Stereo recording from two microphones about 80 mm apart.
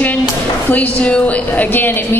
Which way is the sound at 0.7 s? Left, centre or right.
Centre.